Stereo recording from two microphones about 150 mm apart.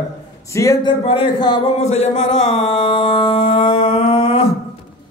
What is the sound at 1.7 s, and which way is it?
Music, 45° left (ahead or behind).